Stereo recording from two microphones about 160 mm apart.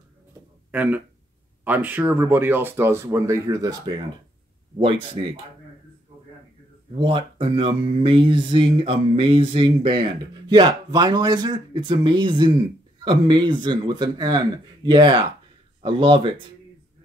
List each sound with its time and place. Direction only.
0.7 s speech: 10° right (ahead or behind)
4.7 s speech: 35° right (ahead or behind)
7.0 s speech: 30° right (ahead or behind)